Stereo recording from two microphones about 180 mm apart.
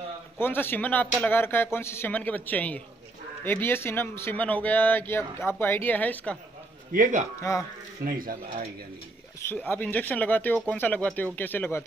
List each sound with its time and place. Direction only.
0.4 s a man's voice: 10° left (ahead or behind)
6.9 s speech: 45° right (ahead or behind)
7.3 s a man's voice: 15° left (ahead or behind)
8.0 s speech: 50° right (ahead or behind)
9.4 s a man's voice: 10° left (ahead or behind)